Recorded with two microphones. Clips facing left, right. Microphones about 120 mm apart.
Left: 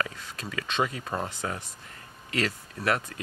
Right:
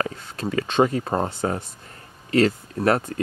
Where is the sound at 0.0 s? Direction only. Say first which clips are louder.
Right 7 dB; 30° right (ahead or behind).